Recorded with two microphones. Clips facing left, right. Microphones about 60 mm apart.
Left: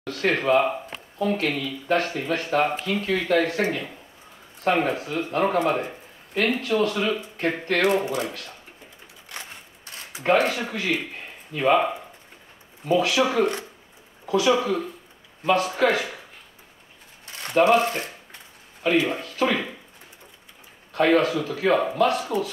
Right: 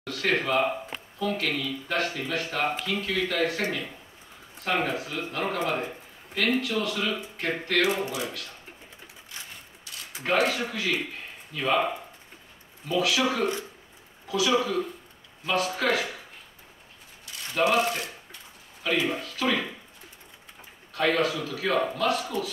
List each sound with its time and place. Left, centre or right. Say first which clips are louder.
0.0 s speech: left 3 dB; left
9.3 s sewing machine: left 5 dB; left
9.9 s a sound: left 2 dB; left
10.2 s speech: left 4 dB; left
12.8 s speech: left 4 dB; left
17.6 s speech: left 5 dB; left
20.9 s speech: left 5 dB; left